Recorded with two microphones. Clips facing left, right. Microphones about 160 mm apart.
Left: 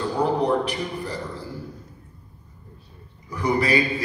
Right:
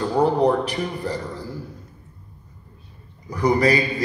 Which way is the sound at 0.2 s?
40° right (ahead or behind).